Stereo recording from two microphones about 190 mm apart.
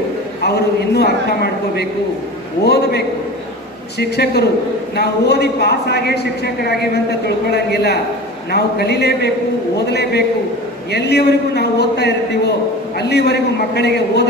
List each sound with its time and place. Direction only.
0.4 s a man's voice: 60° left (ahead or behind)